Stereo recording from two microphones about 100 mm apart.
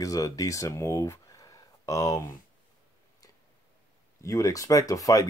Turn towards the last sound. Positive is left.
turn(degrees=35)  # may be behind; listen again after turning